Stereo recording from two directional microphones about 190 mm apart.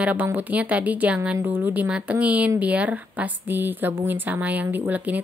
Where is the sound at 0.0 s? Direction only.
10° right (ahead or behind).